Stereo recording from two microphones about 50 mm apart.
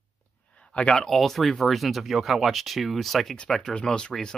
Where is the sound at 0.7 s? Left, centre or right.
Left.